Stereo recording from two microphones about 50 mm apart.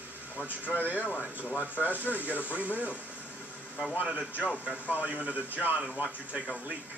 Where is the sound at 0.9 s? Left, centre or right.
Left.